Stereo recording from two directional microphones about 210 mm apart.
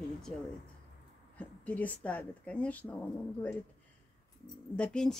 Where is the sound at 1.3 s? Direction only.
5° left (ahead or behind).